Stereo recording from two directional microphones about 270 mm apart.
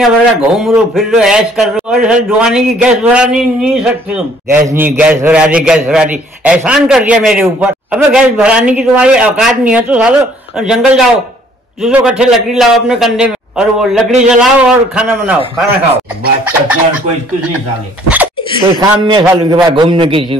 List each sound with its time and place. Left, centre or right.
0.0 s a man's voice: centre
18.0 s a sound: centre
18.8 s a man's voice: centre